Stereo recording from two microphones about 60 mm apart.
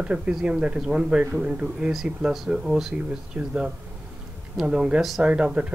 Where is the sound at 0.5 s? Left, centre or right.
Centre.